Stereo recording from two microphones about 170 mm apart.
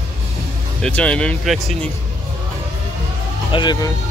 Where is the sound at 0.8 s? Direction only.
5° left (ahead or behind).